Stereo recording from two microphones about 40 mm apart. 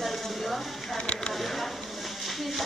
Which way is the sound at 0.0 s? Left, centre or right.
Centre.